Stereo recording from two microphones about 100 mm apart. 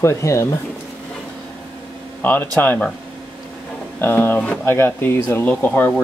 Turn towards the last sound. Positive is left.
turn(degrees=15)  # may be behind; listen again after turning